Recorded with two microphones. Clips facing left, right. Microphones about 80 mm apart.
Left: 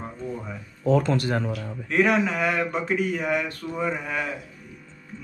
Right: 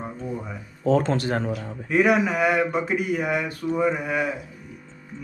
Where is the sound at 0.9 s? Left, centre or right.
Right.